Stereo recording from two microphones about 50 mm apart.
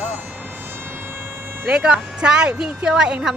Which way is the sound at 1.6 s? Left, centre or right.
Centre.